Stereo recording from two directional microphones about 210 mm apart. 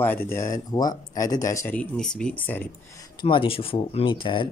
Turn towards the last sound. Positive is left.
turn(degrees=25)  # may be behind; listen again after turning